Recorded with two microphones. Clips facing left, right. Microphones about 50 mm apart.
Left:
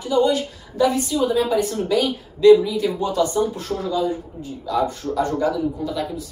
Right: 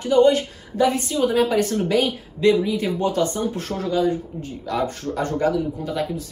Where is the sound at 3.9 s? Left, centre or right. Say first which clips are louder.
Right 2 dB; right.